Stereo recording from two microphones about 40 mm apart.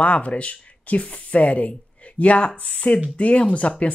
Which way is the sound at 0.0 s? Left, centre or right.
Left.